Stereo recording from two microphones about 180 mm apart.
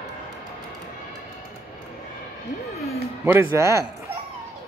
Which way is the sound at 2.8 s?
15° right (ahead or behind).